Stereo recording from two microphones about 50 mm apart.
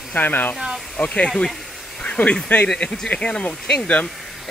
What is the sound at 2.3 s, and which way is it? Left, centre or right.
Speech, centre.